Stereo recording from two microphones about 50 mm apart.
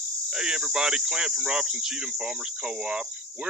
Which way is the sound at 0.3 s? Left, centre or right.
Centre.